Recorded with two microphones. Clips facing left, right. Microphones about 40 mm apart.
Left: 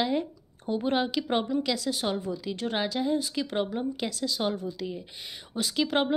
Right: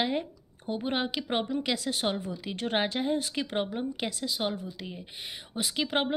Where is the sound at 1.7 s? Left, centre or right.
Right.